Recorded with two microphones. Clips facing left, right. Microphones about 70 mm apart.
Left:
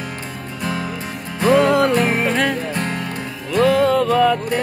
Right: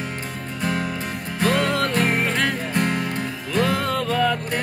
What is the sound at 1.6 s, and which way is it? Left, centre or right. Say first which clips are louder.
Music: left 7 dB; centre.